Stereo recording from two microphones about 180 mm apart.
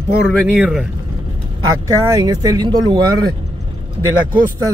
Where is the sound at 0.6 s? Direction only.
5° right (ahead or behind).